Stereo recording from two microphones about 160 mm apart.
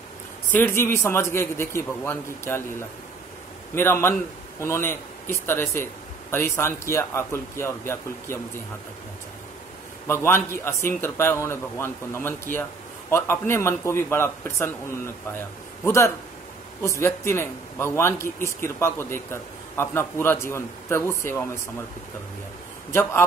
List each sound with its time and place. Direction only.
0.5 s a man's voice: 10° left (ahead or behind)
3.7 s a man's voice: 15° left (ahead or behind)
10.0 s a man's voice: 15° left (ahead or behind)
15.8 s a man's voice: 15° left (ahead or behind)
22.8 s a man's voice: 15° left (ahead or behind)